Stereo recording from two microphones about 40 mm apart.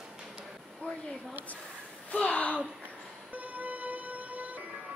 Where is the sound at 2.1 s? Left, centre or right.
Left.